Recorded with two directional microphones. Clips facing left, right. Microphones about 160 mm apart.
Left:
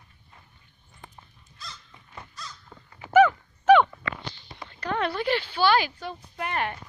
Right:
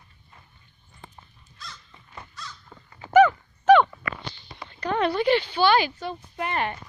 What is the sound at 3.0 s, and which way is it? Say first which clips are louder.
Dog: right 1 dB; 10° left (ahead or behind).